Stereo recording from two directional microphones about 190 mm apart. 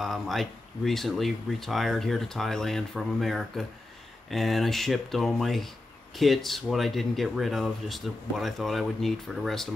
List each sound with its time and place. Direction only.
0.0 s speech: centre (ahead or behind)